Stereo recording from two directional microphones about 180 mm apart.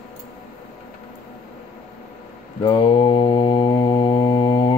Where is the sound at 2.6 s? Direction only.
25° left (ahead or behind).